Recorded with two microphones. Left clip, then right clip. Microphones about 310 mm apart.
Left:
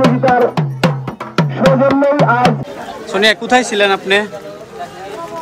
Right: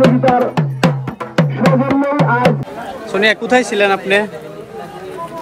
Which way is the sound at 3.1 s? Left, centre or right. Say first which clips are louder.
Left 1 dB; centre.